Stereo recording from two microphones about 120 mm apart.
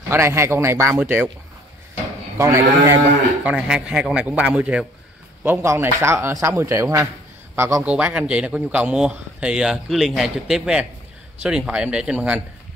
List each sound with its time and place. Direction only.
0.1 s a man's voice: 25° right (ahead or behind)
2.3 s a man's voice: 25° right (ahead or behind)
3.4 s a man's voice: 5° right (ahead or behind); by 7.8 s 25° right (ahead or behind)
7.8 s speech: 10° right (ahead or behind)